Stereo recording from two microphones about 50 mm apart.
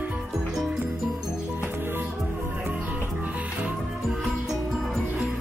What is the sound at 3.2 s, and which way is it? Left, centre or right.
Music, right.